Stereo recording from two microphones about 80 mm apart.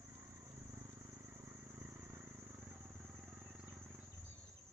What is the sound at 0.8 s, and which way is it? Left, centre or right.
Cricket, right.